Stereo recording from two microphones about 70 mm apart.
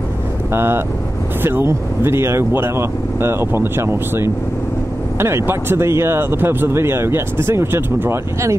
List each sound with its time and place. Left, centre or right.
0.5 s speech: right